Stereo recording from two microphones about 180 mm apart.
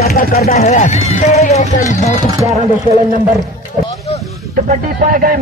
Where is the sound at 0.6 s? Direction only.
40° left (ahead or behind).